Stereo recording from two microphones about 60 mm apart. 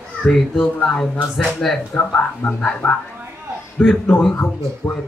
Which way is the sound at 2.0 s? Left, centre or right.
Left.